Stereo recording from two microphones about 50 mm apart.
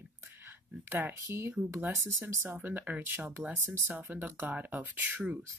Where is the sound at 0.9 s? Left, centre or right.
Right.